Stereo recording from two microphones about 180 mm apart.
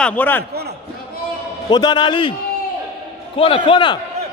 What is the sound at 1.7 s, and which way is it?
A man's voice, 25° left (ahead or behind).